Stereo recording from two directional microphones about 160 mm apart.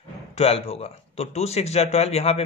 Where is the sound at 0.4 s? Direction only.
40° left (ahead or behind).